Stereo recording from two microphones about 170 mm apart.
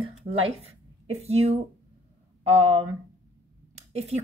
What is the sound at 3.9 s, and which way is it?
Speech, 40° right (ahead or behind).